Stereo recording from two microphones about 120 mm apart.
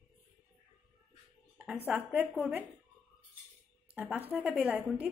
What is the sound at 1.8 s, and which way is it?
Speech, 10° right (ahead or behind).